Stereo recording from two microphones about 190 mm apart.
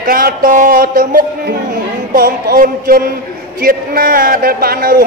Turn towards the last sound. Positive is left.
turn(degrees=-50)  # may be behind; listen again after turning